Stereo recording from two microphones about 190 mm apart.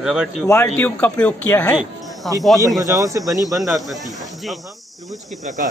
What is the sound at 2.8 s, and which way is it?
Speech, 20° right (ahead or behind).